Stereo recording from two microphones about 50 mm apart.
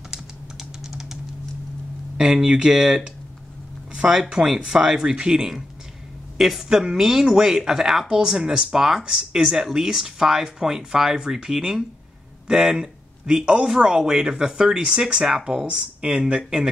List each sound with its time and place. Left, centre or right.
0.8 s typing: centre
2.1 s speech: centre